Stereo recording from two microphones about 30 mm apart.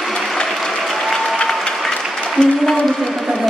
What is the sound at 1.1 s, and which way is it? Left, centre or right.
Applause, centre.